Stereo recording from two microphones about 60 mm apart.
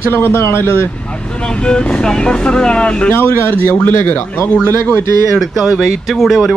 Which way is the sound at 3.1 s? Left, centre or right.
Left.